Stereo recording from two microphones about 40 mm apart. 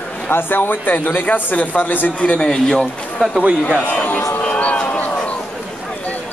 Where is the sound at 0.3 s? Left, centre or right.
Left.